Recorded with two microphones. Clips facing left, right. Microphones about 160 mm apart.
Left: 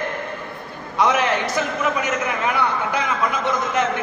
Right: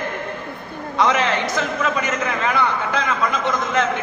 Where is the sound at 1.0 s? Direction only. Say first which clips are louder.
Even; 15° left (ahead or behind).